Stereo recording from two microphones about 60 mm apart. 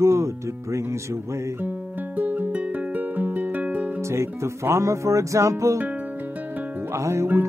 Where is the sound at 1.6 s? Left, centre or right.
Right.